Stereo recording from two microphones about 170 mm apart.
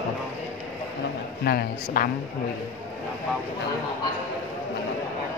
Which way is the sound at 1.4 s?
65° left (ahead or behind).